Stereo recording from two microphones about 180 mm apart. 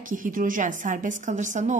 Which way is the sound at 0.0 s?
50° right (ahead or behind).